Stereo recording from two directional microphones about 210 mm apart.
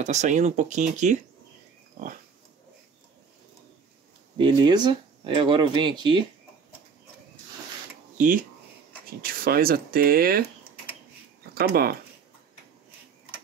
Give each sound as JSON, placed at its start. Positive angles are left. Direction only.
{"t": 0.0, "sound": "speech", "side_deg": -35}
{"t": 4.4, "sound": "speech", "side_deg": -20}
{"t": 8.2, "sound": "speech", "side_deg": -40}
{"t": 11.5, "sound": "speech", "side_deg": -45}